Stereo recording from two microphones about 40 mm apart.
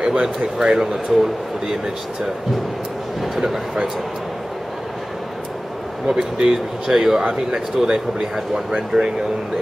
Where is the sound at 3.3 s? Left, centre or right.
Centre.